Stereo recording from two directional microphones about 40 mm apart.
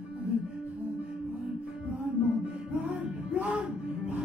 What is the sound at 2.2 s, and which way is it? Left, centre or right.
Music, right.